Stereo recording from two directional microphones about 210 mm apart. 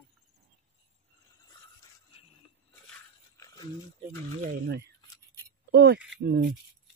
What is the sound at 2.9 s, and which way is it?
Biting, 15° left (ahead or behind).